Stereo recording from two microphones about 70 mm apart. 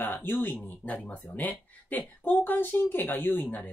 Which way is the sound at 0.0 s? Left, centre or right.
Left.